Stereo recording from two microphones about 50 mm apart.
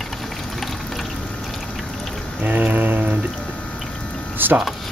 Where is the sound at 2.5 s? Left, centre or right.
Right.